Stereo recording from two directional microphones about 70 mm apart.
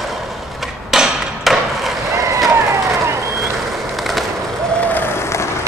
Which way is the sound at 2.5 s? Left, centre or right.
Right.